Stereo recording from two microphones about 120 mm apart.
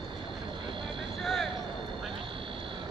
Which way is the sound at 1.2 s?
Centre (ahead or behind).